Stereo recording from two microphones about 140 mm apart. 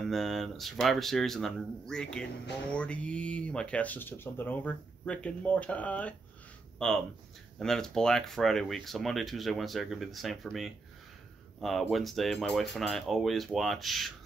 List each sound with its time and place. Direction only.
0.0 s speech: centre (ahead or behind)
11.9 s speech: centre (ahead or behind)